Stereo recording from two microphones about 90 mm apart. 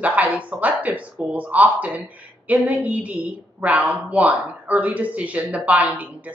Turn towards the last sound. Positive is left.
turn(degrees=-15)  # may be behind; listen again after turning